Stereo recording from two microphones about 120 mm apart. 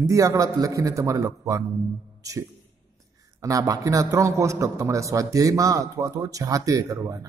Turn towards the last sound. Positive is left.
turn(degrees=-30)  # may be behind; listen again after turning